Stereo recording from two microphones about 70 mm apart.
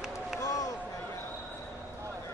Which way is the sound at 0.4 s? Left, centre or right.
Left.